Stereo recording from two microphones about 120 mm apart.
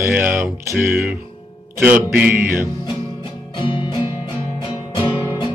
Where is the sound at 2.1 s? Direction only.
15° right (ahead or behind).